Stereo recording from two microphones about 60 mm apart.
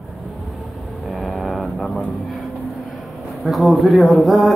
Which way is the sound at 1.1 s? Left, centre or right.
Centre.